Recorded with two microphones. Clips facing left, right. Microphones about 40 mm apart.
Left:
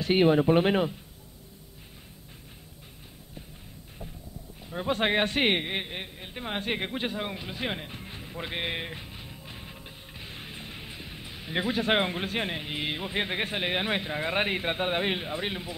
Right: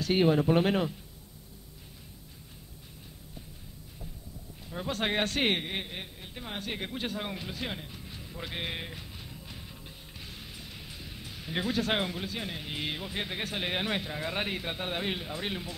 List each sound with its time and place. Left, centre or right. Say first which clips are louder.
0.0 s a man's voice: left 3 dB; left
4.6 s a man's voice: left 5 dB; centre
7.2 s speech: left 2 dB; centre
7.5 s music: left 4 dB; left
12.1 s a man's voice: left 6 dB; left
12.6 s a man's voice: left 3 dB; centre
13.1 s a man's voice: left 5 dB; left
13.6 s a man's voice: left 1 dB; centre